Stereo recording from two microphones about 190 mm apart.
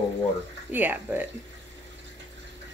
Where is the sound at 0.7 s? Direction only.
10° right (ahead or behind).